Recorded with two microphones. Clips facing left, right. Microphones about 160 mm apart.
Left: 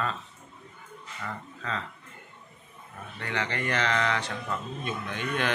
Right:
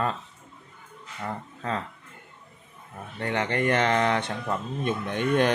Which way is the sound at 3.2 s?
50° right (ahead or behind).